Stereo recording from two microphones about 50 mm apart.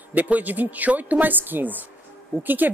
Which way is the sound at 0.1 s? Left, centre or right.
Right.